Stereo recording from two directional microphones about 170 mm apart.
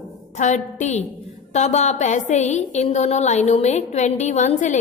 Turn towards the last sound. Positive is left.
turn(degrees=45)  # may be behind; listen again after turning